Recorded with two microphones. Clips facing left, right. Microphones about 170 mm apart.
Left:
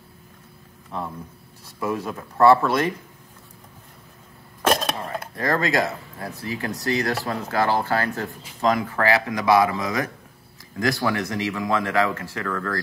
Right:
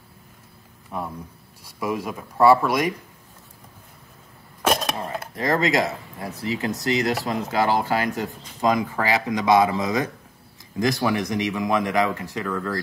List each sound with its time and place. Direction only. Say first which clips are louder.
0.9 s speech: even; 10° right (ahead or behind)
4.6 s a sound: left 1 dB; centre (ahead or behind)
5.3 s speech: right 1 dB; 20° right (ahead or behind)